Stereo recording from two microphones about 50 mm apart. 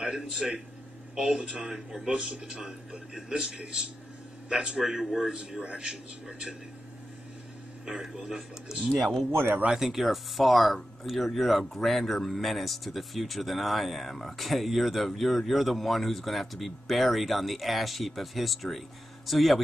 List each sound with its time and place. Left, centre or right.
0.1 s a man's voice: centre
5.3 s a man's voice: centre
7.8 s a man's voice: centre
9.3 s a man's voice: right
9.8 s speech: centre